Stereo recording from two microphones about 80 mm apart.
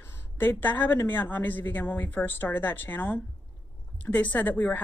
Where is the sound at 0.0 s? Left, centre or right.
Left.